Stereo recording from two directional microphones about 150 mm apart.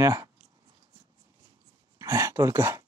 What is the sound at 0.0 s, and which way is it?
Speech, 20° right (ahead or behind).